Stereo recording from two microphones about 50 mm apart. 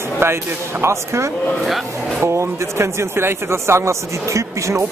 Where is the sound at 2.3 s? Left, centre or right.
Right.